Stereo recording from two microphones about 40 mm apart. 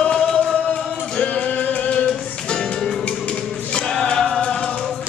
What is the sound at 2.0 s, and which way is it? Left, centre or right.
Music, left.